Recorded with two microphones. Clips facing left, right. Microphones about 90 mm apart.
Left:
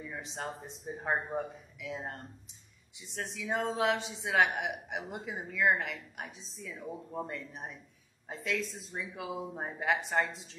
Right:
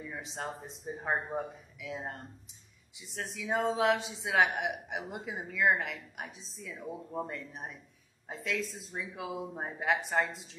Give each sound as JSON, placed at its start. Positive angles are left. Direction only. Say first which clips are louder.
{"t": 0.0, "sound": "speech", "louder": "even", "side_deg": 0}